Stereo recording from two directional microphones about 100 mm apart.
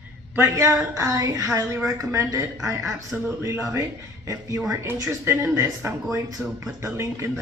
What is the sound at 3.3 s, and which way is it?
A woman's voice, 25° right (ahead or behind).